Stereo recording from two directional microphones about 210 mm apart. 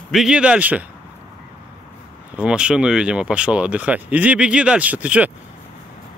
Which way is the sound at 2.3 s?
5° right (ahead or behind).